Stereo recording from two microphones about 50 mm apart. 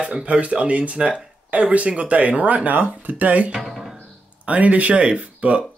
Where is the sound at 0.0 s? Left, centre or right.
Right.